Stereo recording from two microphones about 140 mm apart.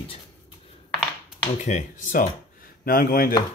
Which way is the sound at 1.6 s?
60° left (ahead or behind).